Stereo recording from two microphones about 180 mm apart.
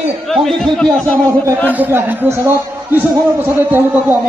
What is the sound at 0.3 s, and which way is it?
Speech, centre (ahead or behind).